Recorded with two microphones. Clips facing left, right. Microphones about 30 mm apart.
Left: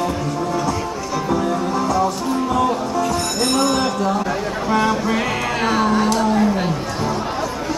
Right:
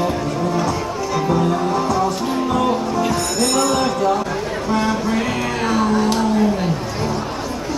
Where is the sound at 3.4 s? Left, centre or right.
Centre.